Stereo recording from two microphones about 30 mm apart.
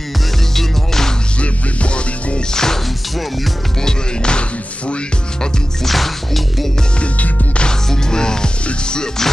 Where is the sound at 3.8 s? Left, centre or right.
Left.